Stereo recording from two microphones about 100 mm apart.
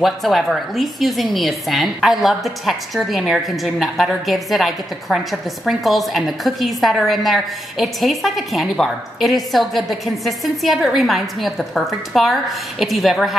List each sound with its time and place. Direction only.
0.0 s a woman's voice: centre (ahead or behind)